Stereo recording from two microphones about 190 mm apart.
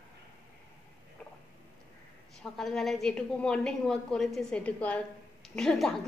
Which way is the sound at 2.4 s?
Centre (ahead or behind).